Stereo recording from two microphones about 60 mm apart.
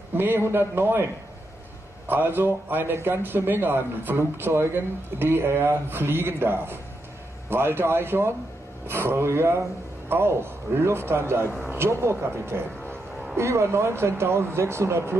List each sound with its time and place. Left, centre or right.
0.2 s a man's voice: right